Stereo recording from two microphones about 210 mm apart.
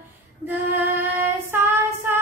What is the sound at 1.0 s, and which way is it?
Child singing, 10° right (ahead or behind).